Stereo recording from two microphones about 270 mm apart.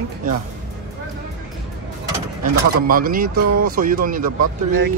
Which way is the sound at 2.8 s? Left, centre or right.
Right.